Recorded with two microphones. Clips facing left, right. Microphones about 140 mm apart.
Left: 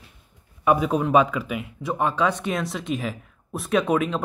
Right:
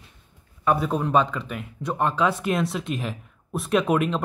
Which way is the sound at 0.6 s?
10° left (ahead or behind).